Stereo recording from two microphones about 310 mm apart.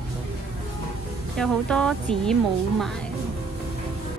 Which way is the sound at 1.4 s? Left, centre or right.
Centre.